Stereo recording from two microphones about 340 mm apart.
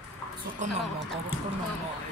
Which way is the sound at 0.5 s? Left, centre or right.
Right.